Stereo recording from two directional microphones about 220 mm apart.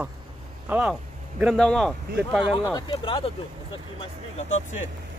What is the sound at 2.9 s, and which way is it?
Speech, 25° left (ahead or behind).